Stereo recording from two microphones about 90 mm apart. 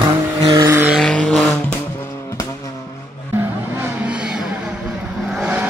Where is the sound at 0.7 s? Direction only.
25° right (ahead or behind).